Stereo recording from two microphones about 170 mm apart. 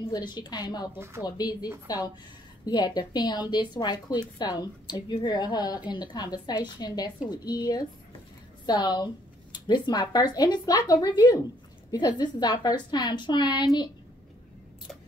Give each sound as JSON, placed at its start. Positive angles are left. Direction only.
{"t": 0.1, "sound": "a woman's voice", "side_deg": 25}
{"t": 0.9, "sound": "speech", "side_deg": -15}
{"t": 1.2, "sound": "a woman's voice", "side_deg": 25}